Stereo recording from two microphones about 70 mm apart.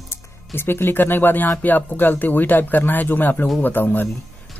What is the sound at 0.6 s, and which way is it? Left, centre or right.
Speech, left.